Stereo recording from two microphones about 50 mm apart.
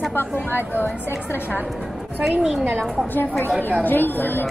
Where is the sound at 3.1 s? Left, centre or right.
Left.